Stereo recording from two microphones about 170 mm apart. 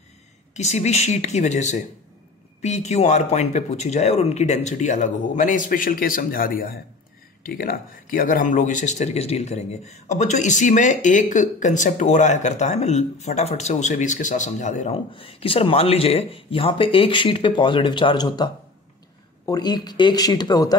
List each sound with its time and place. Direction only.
0.6 s speech: 40° left (ahead or behind)
15.0 s speech: 30° left (ahead or behind)